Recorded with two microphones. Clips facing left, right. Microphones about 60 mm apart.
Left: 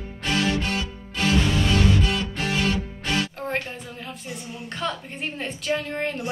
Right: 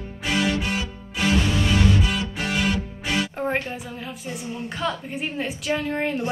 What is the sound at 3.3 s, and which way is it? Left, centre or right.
Music, centre.